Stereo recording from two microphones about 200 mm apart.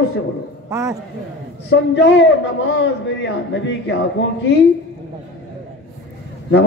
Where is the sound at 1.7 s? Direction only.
60° left (ahead or behind).